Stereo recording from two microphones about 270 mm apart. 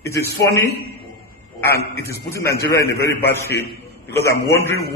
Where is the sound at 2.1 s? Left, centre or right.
Centre.